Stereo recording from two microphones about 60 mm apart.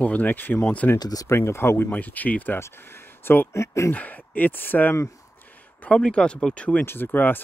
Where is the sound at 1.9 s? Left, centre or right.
Left.